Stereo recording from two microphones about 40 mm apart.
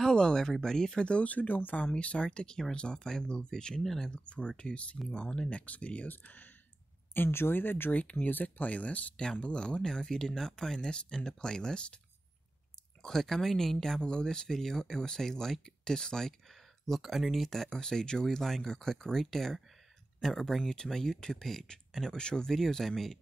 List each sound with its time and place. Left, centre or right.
0.1 s speech: centre; by 2.0 s left
2.0 s speech: left
3.8 s speech: centre
4.1 s speech: left
6.0 s speech: left
7.2 s speech: left
7.9 s speech: left
9.1 s speech: left
13.0 s speech: centre
17.0 s speech: centre
20.6 s speech: centre